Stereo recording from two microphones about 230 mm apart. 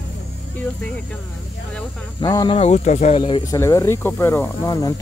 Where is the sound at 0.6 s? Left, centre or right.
Centre.